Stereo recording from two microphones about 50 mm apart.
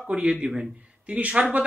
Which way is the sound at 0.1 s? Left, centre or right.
Centre.